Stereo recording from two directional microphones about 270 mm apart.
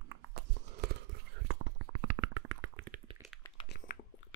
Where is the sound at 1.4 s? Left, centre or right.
Right.